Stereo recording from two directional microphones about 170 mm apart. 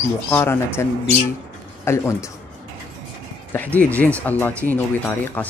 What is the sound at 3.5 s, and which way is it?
Speech, 10° left (ahead or behind).